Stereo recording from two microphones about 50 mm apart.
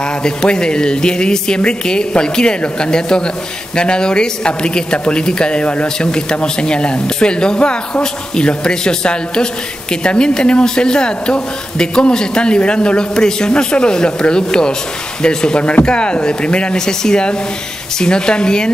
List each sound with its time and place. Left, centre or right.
0.2 s speech: centre